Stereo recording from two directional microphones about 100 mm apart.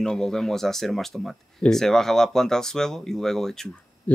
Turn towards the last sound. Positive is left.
turn(degrees=15)  # may be behind; listen again after turning